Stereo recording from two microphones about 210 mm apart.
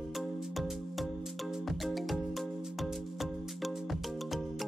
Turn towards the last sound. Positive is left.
turn(degrees=0)  # may be behind; listen again after turning